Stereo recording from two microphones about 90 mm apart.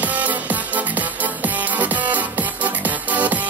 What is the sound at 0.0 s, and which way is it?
Music, 20° right (ahead or behind).